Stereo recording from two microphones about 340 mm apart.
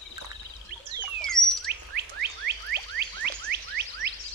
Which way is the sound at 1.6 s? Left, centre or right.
Right.